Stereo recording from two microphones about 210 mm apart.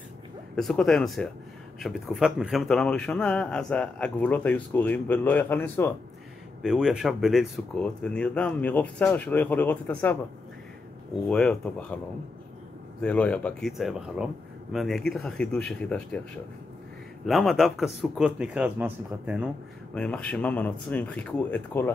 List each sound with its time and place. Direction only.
0.6 s a man's voice: 5° left (ahead or behind)
6.6 s a man's voice: 5° right (ahead or behind)
11.2 s a man's voice: 5° left (ahead or behind)
13.0 s a man's voice: 5° left (ahead or behind)
17.3 s a man's voice: centre (ahead or behind)
19.9 s speech: 5° left (ahead or behind)